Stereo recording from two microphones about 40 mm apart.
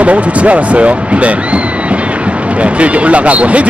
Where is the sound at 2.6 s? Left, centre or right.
Right.